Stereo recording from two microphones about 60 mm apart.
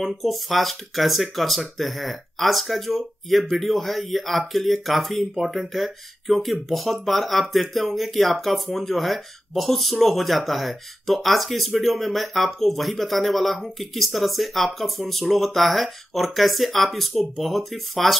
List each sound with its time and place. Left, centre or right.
0.0 s speech: centre